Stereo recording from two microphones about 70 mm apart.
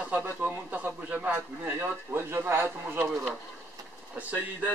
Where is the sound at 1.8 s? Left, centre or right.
Right.